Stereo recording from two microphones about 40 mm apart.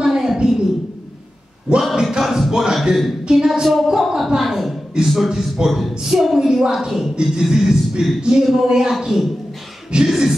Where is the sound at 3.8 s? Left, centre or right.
Centre.